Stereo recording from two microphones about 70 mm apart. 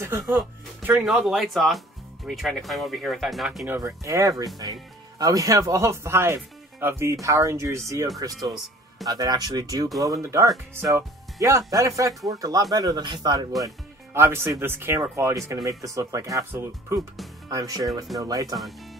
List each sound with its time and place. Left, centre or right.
0.0 s speech: right
1.0 s speech: centre
3.8 s speech: right
9.0 s speech: right
12.7 s speech: right
14.1 s speech: right
15.0 s speech: right
17.5 s speech: right